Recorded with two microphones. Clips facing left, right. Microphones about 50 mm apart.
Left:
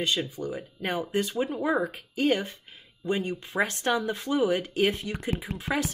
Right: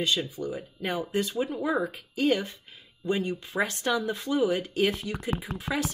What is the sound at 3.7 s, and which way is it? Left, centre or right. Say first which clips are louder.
Speech: left 1 dB; left.